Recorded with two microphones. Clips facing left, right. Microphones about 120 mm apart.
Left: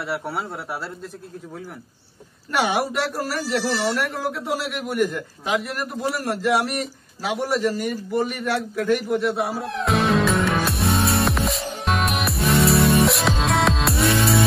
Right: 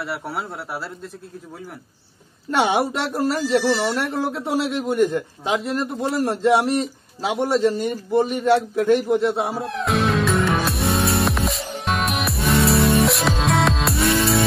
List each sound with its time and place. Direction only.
0.0 s speech: centre (ahead or behind)
2.5 s speech: 25° right (ahead or behind)
9.6 s music: centre (ahead or behind)